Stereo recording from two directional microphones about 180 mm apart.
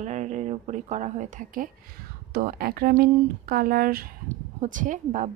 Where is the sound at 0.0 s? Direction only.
40° right (ahead or behind).